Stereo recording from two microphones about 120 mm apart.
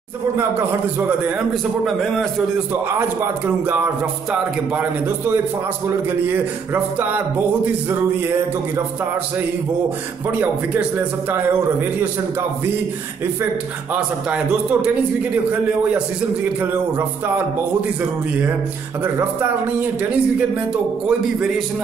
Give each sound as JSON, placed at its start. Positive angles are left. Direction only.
{"t": 0.4, "sound": "speech", "side_deg": -15}
{"t": 1.9, "sound": "a man's voice", "side_deg": 5}
{"t": 2.7, "sound": "speech", "side_deg": -15}
{"t": 10.3, "sound": "speech", "side_deg": -15}
{"t": 13.9, "sound": "speech", "side_deg": -10}